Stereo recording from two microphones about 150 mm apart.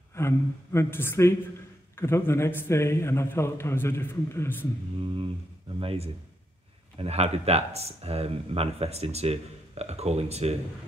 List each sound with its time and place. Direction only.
0.1 s a woman's voice: 20° left (ahead or behind)
5.8 s a man's voice: 40° right (ahead or behind)